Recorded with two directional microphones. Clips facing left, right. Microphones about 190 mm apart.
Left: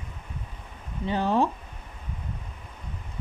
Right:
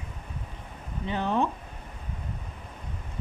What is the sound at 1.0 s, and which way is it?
Speech, 35° left (ahead or behind).